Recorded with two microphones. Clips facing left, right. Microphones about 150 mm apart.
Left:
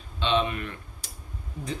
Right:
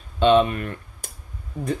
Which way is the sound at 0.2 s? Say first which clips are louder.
Right 9 dB; 50° right (ahead or behind).